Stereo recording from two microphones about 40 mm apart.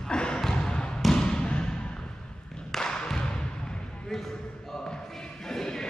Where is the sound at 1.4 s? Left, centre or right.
Left.